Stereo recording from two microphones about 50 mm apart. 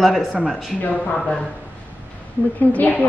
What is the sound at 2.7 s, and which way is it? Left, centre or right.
Speech, left.